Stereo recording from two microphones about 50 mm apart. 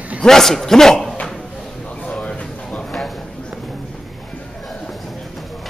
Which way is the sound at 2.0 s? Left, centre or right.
Left.